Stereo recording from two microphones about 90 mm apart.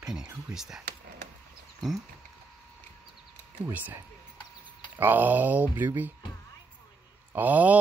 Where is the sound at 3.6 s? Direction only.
20° right (ahead or behind).